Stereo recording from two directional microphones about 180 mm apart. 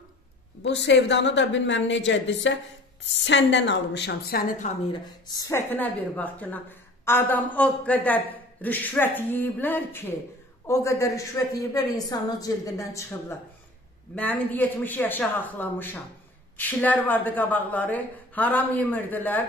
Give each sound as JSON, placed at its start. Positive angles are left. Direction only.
{"t": 0.6, "sound": "a woman's voice", "side_deg": 75}
{"t": 5.2, "sound": "a man's voice", "side_deg": 20}